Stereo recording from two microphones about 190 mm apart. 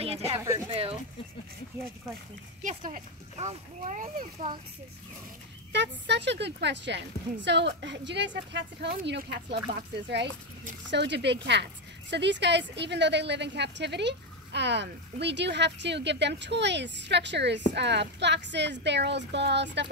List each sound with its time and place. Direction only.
0.7 s a sound: 30° right (ahead or behind)
2.6 s speech: 45° right (ahead or behind)
5.7 s a woman's voice: 65° right (ahead or behind)